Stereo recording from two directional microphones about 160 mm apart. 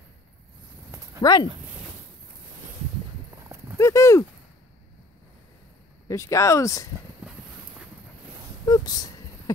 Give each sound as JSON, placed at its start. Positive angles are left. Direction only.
{"t": 1.2, "sound": "speech", "side_deg": 25}
{"t": 3.7, "sound": "speech", "side_deg": 20}
{"t": 6.0, "sound": "speech", "side_deg": 20}
{"t": 8.6, "sound": "speech", "side_deg": 25}